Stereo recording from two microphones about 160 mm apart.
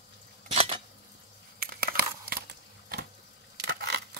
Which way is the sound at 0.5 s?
40° right (ahead or behind).